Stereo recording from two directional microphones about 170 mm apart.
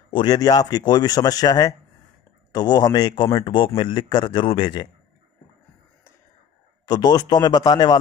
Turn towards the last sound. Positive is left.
turn(degrees=25)  # may be behind; listen again after turning